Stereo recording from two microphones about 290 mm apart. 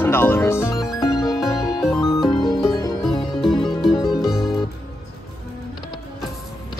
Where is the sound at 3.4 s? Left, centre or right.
Centre.